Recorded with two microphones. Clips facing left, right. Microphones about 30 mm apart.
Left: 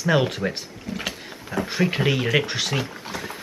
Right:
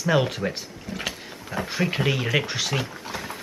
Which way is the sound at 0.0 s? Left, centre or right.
Centre.